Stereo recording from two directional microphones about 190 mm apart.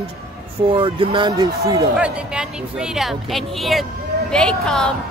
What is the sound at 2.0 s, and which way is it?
Speech, 5° right (ahead or behind).